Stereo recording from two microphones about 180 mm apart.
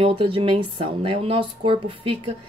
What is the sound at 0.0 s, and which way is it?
A woman's voice, 30° right (ahead or behind).